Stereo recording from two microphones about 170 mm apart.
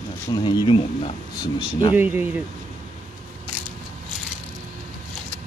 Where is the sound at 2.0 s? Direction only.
10° right (ahead or behind).